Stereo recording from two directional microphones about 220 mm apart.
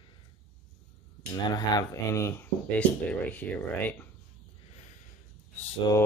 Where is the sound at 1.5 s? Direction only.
15° left (ahead or behind).